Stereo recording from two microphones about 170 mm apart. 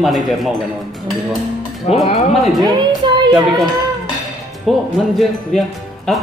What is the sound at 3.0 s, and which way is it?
Child singing, 30° right (ahead or behind).